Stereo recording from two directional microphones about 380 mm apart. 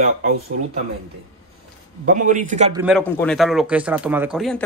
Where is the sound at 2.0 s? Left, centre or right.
Centre.